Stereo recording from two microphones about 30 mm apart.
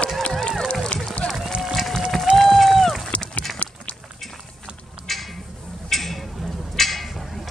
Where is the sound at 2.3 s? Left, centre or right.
Centre.